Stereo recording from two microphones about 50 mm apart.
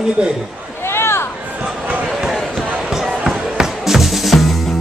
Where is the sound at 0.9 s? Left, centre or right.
Left.